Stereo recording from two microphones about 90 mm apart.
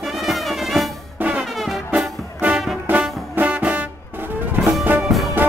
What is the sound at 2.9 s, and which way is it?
Brass instrument, 15° right (ahead or behind).